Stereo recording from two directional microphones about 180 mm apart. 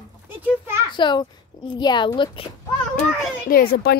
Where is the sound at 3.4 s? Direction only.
60° left (ahead or behind).